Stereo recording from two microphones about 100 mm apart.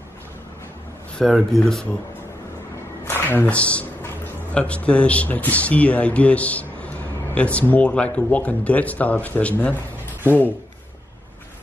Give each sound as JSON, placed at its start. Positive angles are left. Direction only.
{"t": 1.1, "sound": "speech", "side_deg": 5}
{"t": 3.1, "sound": "speech", "side_deg": 20}